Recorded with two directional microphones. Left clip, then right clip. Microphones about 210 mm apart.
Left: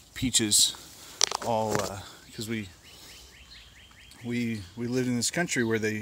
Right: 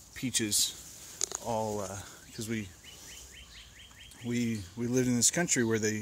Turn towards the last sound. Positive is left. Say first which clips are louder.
# left 2 dB
turn(degrees=10)  # may be behind; listen again after turning